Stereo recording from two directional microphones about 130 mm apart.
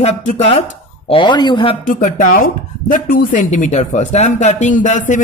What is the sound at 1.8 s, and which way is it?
Speech, 80° left.